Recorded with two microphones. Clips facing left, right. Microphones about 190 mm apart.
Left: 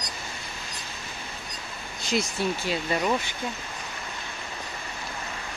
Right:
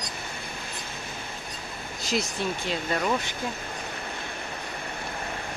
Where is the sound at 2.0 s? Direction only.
Centre (ahead or behind).